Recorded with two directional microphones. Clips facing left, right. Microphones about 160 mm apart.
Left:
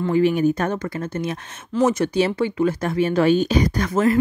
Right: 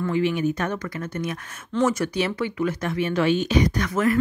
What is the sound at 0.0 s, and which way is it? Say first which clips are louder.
Speech: left 5 dB; 40° left (ahead or behind).